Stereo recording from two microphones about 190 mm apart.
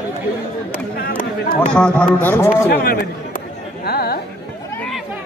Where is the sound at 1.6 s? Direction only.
5° left (ahead or behind).